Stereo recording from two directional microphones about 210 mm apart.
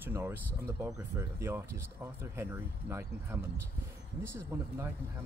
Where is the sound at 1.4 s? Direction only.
15° right (ahead or behind).